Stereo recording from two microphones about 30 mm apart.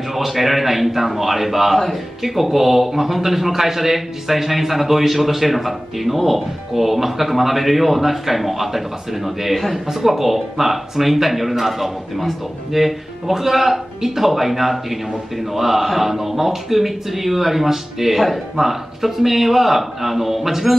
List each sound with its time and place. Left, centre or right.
0.1 s a man's voice: centre